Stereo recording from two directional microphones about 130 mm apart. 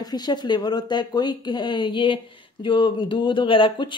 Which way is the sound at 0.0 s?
30° left (ahead or behind).